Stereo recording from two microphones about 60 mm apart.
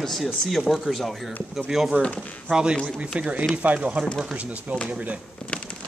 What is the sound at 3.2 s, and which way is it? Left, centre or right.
Speech, right.